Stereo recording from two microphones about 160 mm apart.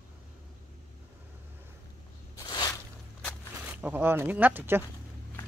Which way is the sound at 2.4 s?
25° left (ahead or behind).